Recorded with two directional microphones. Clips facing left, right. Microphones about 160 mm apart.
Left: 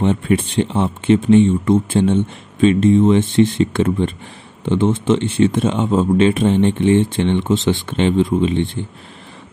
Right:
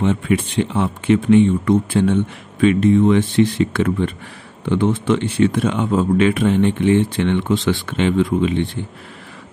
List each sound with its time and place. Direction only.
0.0 s speech: 35° left (ahead or behind)